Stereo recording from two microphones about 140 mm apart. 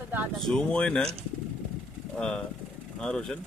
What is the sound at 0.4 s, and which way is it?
Speech, 5° left (ahead or behind).